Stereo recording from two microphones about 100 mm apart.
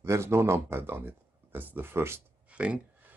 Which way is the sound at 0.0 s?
25° right (ahead or behind).